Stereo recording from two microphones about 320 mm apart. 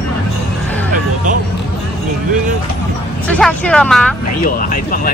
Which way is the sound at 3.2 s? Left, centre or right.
Centre.